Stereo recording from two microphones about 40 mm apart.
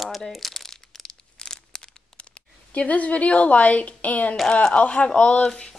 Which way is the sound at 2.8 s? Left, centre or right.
Left.